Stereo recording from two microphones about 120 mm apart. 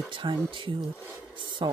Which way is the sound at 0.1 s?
45° right (ahead or behind).